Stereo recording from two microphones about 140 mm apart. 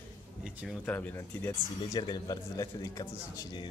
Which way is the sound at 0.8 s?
10° left (ahead or behind).